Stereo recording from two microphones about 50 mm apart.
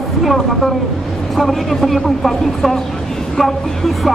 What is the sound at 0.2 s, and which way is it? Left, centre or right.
Speech, centre.